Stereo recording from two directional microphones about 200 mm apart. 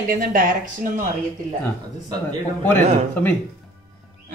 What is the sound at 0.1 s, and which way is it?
Speech, 45° right (ahead or behind).